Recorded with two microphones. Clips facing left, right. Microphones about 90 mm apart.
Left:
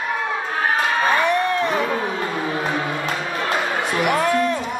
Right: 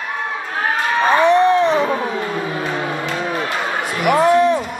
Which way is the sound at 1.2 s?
25° right (ahead or behind).